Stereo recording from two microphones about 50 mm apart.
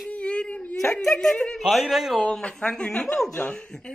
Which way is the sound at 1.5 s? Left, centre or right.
Centre.